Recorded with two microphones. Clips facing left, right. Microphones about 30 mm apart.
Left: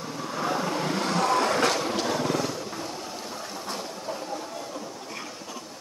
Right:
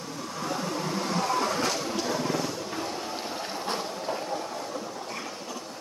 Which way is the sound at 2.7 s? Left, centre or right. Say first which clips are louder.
Right 2 dB; centre.